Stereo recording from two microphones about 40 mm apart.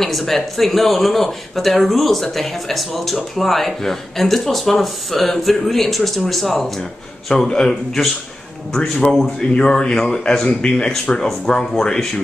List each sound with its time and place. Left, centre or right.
0.0 s speech: centre
7.4 s a man's voice: centre
9.4 s a man's voice: centre